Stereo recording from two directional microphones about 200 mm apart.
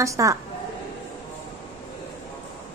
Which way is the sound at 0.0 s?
15° right (ahead or behind).